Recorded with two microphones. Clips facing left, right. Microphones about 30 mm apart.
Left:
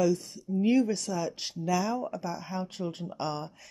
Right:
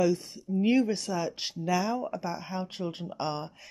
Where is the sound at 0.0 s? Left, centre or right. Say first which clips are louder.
Even; right.